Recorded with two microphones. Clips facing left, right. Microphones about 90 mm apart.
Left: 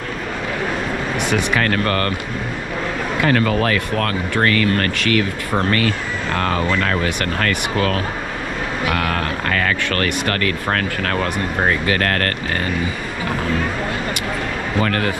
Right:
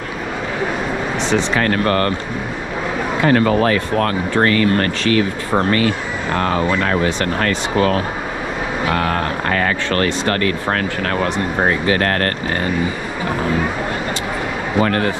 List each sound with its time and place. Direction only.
1.3 s speech: 25° right (ahead or behind)
3.3 s speech: 25° right (ahead or behind)
14.8 s speech: 25° right (ahead or behind)